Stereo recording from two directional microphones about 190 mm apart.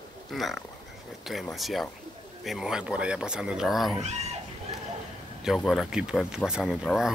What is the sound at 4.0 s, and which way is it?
Speech, 35° right (ahead or behind).